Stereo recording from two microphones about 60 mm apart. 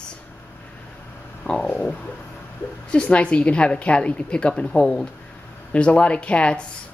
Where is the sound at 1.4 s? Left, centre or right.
Centre.